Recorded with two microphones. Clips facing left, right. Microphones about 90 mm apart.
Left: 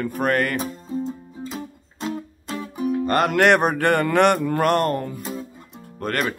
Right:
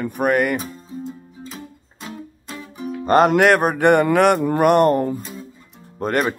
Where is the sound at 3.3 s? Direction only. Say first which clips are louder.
Right 2 dB; centre (ahead or behind).